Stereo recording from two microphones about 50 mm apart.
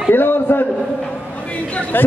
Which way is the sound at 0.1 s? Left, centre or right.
Left.